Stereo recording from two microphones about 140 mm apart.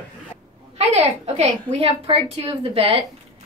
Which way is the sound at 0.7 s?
50° right (ahead or behind).